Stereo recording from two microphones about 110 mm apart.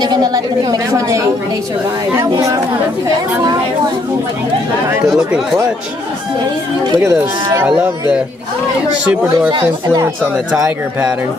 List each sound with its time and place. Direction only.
0.0 s a woman's voice: 40° right (ahead or behind)
7.0 s speech: 25° right (ahead or behind)
10.3 s speech: 10° right (ahead or behind)